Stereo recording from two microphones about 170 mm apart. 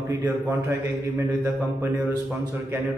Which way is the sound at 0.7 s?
20° right (ahead or behind).